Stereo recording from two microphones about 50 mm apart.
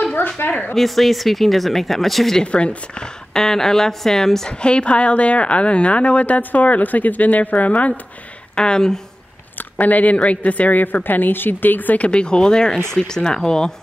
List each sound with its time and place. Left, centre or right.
0.4 s a woman's voice: left
0.7 s speech: centre
2.4 s a woman's voice: left
3.3 s a woman's voice: centre; by 7.9 s left
8.5 s speech: centre
9.6 s a woman's voice: left
12.1 s speech: centre